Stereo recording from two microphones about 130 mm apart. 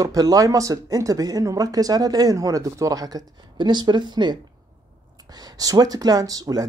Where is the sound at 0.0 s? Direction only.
25° right (ahead or behind).